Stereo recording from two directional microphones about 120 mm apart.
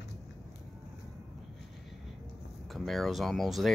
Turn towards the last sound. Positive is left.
turn(degrees=0)  # may be behind; listen again after turning